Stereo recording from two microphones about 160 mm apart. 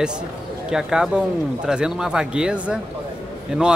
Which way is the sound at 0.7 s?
5° right (ahead or behind).